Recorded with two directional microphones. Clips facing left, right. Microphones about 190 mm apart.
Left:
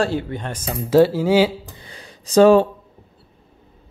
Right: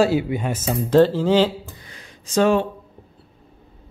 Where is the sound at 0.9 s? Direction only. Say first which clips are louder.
Left 1 dB; 10° left (ahead or behind).